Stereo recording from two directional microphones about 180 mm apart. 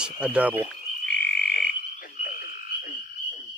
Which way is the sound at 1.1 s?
65° left (ahead or behind).